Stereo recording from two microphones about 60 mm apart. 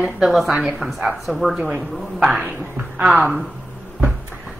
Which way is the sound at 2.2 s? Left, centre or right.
Centre.